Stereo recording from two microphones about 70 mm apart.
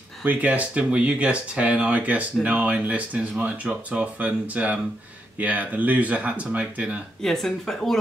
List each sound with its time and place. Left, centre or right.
0.2 s speech: right
7.2 s speech: centre